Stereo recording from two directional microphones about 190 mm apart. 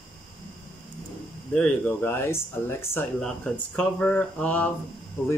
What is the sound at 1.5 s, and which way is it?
Speech, 5° left (ahead or behind).